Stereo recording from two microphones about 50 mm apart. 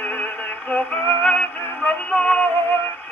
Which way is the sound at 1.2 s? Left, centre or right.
Left.